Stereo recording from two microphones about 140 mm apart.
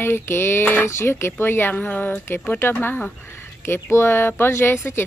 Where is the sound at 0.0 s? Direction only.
15° left (ahead or behind).